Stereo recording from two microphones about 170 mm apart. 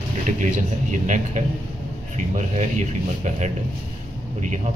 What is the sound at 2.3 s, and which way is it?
A man's voice, 45° right (ahead or behind).